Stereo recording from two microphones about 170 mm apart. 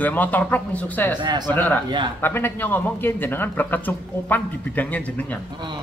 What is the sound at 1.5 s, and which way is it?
A man's voice, 10° left (ahead or behind).